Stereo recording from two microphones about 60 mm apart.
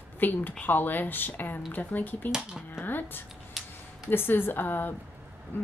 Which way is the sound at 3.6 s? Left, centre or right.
Centre.